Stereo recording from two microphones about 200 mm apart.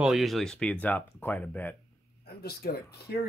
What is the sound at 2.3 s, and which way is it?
Speech, 55° left (ahead or behind).